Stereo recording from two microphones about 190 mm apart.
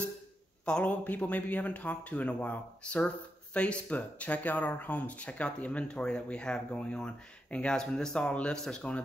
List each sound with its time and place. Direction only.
0.7 s speech: 5° left (ahead or behind)